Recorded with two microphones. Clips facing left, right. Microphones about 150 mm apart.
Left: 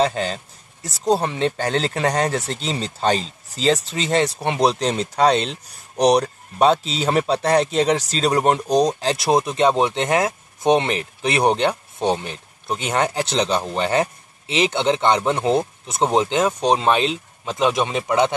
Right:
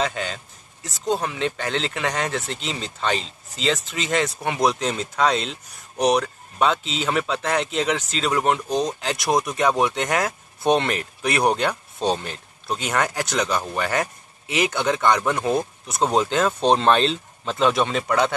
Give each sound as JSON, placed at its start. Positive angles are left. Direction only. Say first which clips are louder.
{"t": 0.0, "sound": "speech", "louder": "left 5 dB", "side_deg": 35}